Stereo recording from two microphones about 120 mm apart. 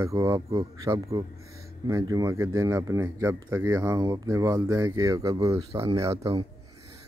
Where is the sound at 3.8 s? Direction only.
35° right (ahead or behind).